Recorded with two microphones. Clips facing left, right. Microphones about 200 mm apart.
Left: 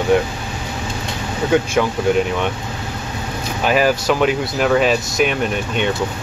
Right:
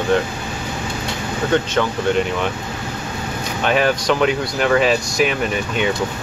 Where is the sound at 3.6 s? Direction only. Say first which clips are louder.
Left 1 dB; 5° left (ahead or behind).